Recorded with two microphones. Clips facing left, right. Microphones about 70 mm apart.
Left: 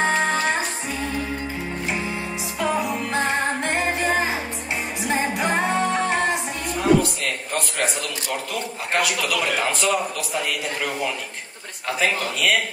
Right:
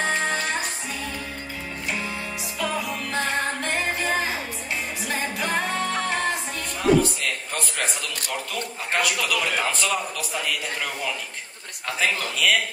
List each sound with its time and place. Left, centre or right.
2.6 s music: left
6.8 s a man's voice: centre